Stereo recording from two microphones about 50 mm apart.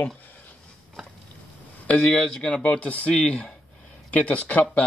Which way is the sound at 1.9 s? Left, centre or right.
Left.